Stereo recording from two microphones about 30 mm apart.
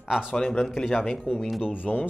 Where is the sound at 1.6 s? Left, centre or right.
Left.